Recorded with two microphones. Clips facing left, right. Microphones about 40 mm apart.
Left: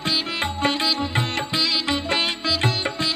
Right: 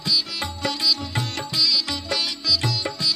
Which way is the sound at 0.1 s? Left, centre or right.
Left.